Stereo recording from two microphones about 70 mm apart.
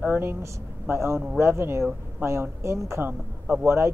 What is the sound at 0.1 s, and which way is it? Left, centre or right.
Speech, right.